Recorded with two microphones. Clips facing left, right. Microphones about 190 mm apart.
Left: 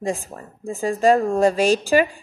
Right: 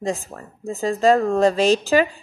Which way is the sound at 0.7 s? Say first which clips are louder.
Even; 15° left (ahead or behind).